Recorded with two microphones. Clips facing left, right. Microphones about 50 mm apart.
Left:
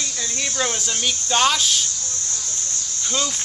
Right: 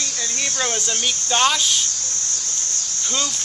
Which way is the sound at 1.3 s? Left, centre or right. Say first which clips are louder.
Even; centre.